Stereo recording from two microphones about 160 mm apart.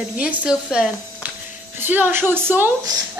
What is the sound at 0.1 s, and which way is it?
A woman's voice, 5° right (ahead or behind).